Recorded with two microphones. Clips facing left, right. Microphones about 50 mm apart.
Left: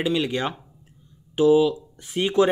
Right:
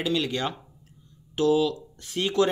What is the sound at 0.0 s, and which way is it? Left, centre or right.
Speech, centre.